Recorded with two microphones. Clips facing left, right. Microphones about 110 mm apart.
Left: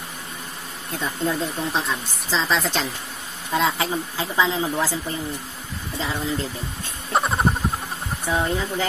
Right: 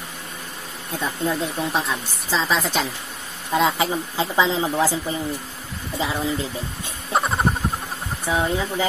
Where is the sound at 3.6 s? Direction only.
20° right (ahead or behind).